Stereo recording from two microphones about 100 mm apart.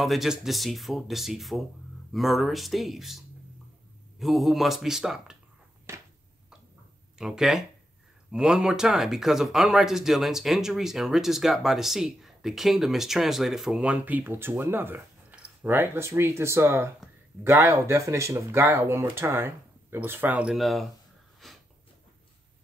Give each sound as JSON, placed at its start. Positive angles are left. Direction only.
{"t": 0.0, "sound": "speech", "side_deg": 0}
{"t": 7.2, "sound": "speech", "side_deg": -5}
{"t": 20.5, "sound": "speech", "side_deg": 0}
{"t": 21.4, "sound": "wheeze", "side_deg": 0}